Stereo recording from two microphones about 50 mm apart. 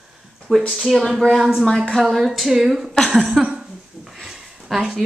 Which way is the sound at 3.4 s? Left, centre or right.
Right.